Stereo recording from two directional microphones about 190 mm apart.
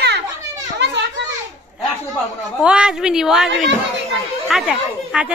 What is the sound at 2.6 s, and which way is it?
Speech, 5° right (ahead or behind).